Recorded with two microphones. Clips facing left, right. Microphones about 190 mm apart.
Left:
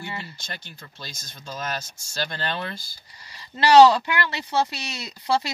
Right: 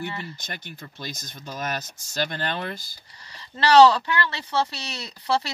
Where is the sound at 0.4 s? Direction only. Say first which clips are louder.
Right 2 dB; 15° right (ahead or behind).